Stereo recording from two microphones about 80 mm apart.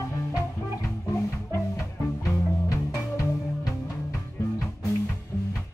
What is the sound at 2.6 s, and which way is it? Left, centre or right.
Music, left.